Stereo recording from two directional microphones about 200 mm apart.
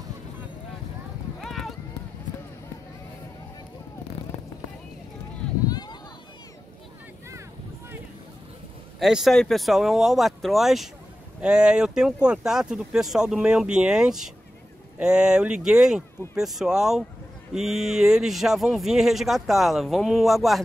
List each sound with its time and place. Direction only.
1.4 s clip-clop: centre (ahead or behind)
5.7 s a sound: 20° left (ahead or behind)
9.0 s speech: centre (ahead or behind)